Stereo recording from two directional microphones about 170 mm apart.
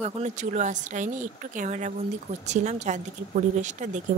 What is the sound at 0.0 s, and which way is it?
Speech, 45° right (ahead or behind).